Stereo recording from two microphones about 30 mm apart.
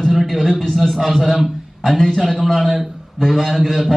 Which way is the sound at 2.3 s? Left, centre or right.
Centre.